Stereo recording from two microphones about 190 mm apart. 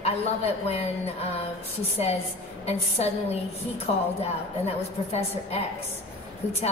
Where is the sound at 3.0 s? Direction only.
35° left (ahead or behind).